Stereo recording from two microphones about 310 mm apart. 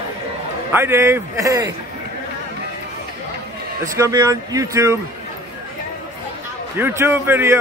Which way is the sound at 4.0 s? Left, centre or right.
Centre.